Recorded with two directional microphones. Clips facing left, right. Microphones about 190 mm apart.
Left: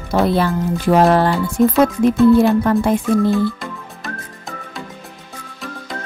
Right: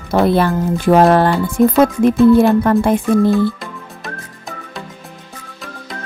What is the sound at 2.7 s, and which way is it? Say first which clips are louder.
Speech: right 2 dB; 55° right (ahead or behind).